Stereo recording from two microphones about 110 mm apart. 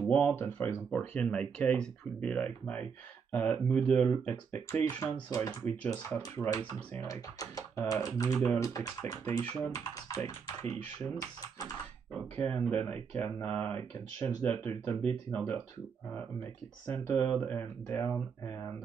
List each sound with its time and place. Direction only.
0.1 s speech: 15° left (ahead or behind)
5.0 s speech: 35° left (ahead or behind)
12.4 s speech: 10° left (ahead or behind)
16.8 s speech: 15° left (ahead or behind)